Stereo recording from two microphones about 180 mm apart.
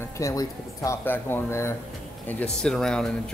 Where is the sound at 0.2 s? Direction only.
20° left (ahead or behind).